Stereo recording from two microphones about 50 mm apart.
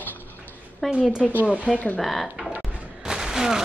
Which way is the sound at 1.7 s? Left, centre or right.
Centre.